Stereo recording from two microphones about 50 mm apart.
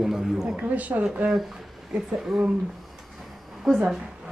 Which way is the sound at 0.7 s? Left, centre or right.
Right.